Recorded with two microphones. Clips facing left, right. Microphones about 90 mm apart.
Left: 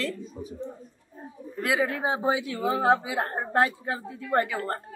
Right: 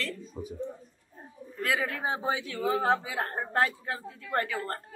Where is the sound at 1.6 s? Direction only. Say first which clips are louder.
Left 4 dB; 15° left (ahead or behind).